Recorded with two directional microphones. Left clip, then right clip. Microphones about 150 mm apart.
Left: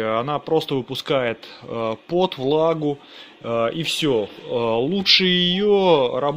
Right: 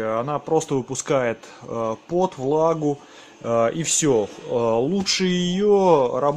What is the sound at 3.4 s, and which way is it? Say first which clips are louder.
Speech: right 1 dB; 5° right (ahead or behind).